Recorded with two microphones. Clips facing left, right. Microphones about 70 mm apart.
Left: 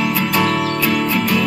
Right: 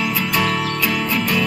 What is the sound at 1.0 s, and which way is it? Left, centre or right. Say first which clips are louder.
Music: left 3 dB; left.